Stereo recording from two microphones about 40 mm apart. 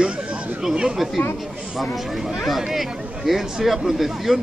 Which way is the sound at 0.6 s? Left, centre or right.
Centre.